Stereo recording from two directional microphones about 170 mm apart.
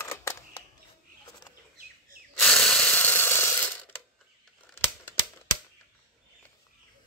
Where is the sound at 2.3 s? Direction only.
5° left (ahead or behind).